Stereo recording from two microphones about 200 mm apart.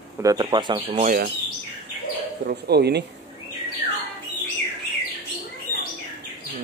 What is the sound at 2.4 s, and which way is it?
Speech, 55° right (ahead or behind).